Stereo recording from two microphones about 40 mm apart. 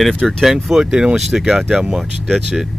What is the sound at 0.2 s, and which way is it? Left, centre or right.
Speech, centre.